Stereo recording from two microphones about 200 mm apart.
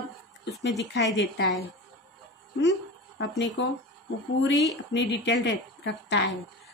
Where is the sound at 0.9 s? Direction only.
65° left (ahead or behind).